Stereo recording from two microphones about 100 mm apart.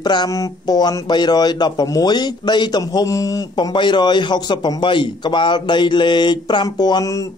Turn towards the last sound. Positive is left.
turn(degrees=40)  # may be behind; listen again after turning